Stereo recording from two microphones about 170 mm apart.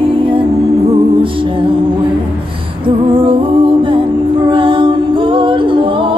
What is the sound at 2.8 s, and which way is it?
Music, 30° right (ahead or behind).